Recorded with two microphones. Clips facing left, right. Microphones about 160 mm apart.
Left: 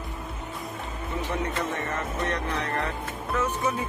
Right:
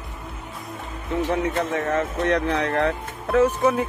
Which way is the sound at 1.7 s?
90° right.